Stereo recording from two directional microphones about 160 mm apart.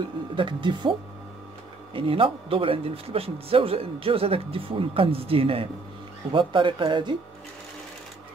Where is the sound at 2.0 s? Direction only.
35° right (ahead or behind).